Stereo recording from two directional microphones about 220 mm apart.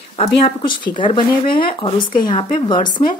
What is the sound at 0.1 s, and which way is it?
Speech, 25° left (ahead or behind).